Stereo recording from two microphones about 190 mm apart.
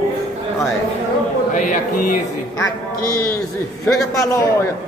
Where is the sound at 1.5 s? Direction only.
40° left (ahead or behind).